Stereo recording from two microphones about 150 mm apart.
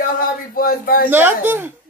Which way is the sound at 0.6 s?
75° left (ahead or behind).